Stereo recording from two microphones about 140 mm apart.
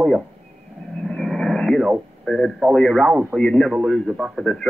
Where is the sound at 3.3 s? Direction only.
5° left (ahead or behind).